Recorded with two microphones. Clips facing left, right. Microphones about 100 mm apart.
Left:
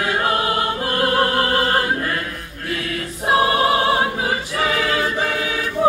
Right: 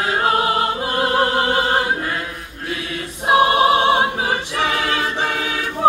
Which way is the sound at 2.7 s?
25° right (ahead or behind).